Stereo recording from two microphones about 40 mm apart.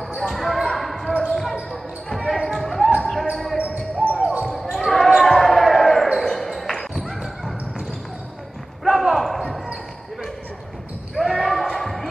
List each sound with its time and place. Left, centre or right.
0.3 s basketball bounce: centre
4.2 s basketball bounce: right
4.7 s basketball bounce: centre
8.8 s basketball bounce: centre
11.3 s basketball bounce: centre